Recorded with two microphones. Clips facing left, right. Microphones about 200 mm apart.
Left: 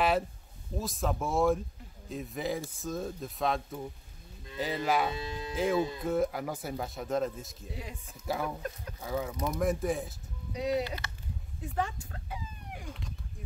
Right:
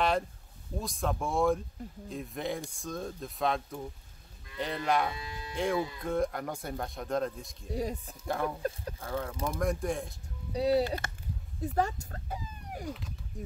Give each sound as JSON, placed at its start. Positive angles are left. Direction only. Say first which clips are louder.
{"t": 0.7, "sound": "speech", "louder": "left 1 dB", "side_deg": 0}
{"t": 5.1, "sound": "speech", "louder": "left 5 dB", "side_deg": 25}
{"t": 5.5, "sound": "speech", "louder": "left 2 dB", "side_deg": 5}
{"t": 7.7, "sound": "speech", "louder": "right 11 dB", "side_deg": -40}
{"t": 8.3, "sound": "speech", "louder": "right 2 dB", "side_deg": 5}
{"t": 10.5, "sound": "speech", "louder": "right 4 dB", "side_deg": -35}
{"t": 11.0, "sound": "a sound", "louder": "right 3 dB", "side_deg": -50}
{"t": 11.6, "sound": "speech", "louder": "right 4 dB", "side_deg": -40}